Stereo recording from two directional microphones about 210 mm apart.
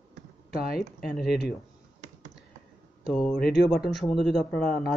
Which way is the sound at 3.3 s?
50° left (ahead or behind).